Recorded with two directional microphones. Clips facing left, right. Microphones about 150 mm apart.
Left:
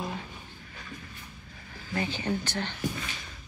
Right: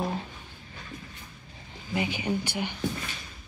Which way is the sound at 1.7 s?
15° right (ahead or behind).